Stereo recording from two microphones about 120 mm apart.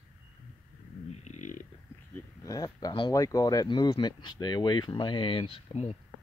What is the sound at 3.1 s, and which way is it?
Speech, 30° left (ahead or behind).